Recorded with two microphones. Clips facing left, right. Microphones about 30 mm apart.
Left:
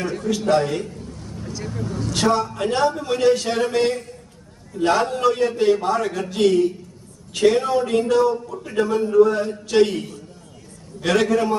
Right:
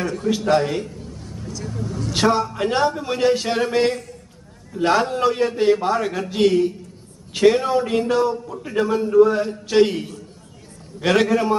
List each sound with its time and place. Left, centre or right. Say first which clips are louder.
0.2 s a man's voice: right 2 dB; centre
0.6 s a sound: even; centre
1.4 s vehicle: left 1 dB; centre
2.0 s a man's voice: right 1 dB; centre